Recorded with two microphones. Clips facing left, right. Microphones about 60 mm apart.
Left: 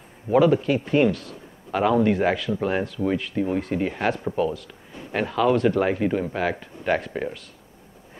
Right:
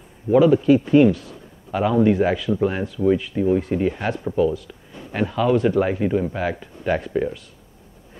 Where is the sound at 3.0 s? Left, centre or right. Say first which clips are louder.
Right 9 dB; centre.